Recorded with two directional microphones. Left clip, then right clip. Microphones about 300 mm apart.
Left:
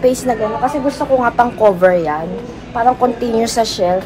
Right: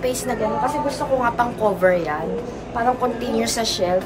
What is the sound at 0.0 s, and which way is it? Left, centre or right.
A woman's voice, centre.